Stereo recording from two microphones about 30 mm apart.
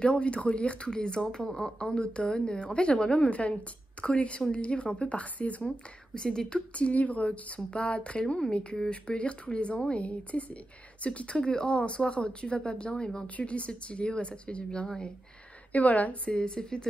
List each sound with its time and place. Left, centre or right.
0.0 s speech: left
0.8 s speech: left
3.3 s speech: left
4.0 s a sound: left
4.5 s speech: left
6.1 s speech: left
6.7 s speech: left
12.9 s speech: left
13.4 s speech: left
15.7 s a woman's voice: left
16.3 s speech: left